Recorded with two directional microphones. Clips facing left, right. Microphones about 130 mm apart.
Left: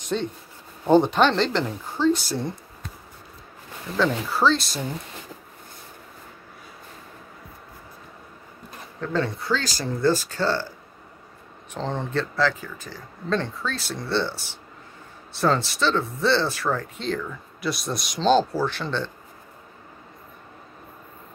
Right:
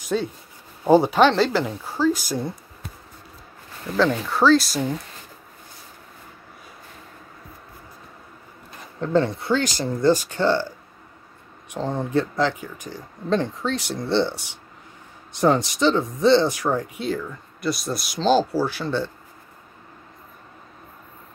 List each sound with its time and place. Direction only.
0.1 s speech: 5° right (ahead or behind)
4.3 s speech: centre (ahead or behind)
9.0 s speech: 25° right (ahead or behind)
11.7 s speech: 10° right (ahead or behind)
17.6 s speech: centre (ahead or behind)